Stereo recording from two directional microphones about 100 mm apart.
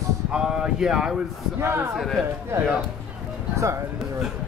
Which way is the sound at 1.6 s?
25° right (ahead or behind).